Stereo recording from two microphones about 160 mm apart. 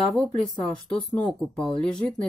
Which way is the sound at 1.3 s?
5° left (ahead or behind).